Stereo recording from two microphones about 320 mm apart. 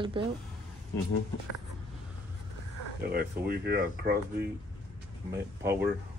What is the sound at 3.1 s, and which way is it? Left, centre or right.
Speech, right.